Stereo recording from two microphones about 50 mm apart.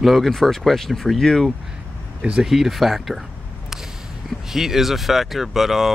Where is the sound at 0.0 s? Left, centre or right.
Centre.